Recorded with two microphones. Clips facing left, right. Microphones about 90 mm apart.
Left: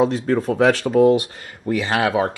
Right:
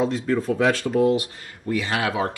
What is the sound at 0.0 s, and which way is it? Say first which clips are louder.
Speech: left 4 dB; 60° left (ahead or behind).